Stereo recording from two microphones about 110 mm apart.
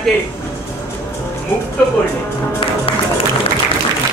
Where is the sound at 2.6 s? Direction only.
55° left (ahead or behind).